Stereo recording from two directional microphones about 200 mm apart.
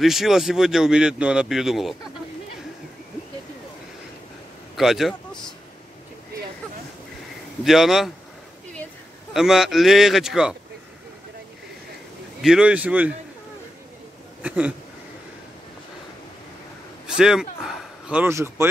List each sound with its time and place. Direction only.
0.0 s speech: centre (ahead or behind)
4.7 s speech: centre (ahead or behind)
7.6 s speech: centre (ahead or behind)
9.3 s speech: centre (ahead or behind)
12.4 s speech: 5° right (ahead or behind)
14.4 s a sound: 5° right (ahead or behind)
17.0 s a man's voice: 5° right (ahead or behind)